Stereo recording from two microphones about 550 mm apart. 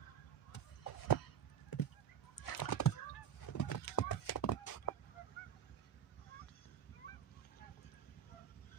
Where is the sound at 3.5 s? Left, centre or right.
Left.